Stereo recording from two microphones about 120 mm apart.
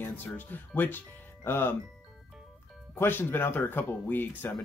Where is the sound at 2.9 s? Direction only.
20° left (ahead or behind).